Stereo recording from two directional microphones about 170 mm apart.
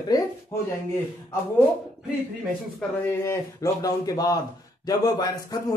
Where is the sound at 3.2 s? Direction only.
15° left (ahead or behind).